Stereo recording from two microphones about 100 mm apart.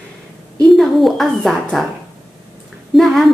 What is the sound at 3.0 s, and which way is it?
Speech, centre (ahead or behind).